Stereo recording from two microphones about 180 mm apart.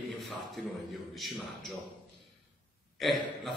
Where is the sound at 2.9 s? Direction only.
Centre (ahead or behind).